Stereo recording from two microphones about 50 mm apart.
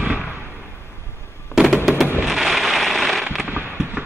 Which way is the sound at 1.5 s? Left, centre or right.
Centre.